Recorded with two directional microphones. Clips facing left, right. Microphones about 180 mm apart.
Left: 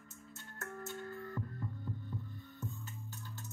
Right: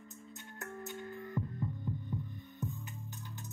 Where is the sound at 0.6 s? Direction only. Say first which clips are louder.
Even; 15° right (ahead or behind).